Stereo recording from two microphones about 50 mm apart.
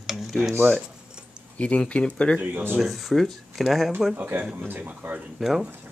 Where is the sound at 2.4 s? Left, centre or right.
Right.